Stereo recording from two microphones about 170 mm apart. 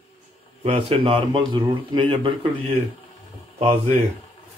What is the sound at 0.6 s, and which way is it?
Speech, 35° right (ahead or behind).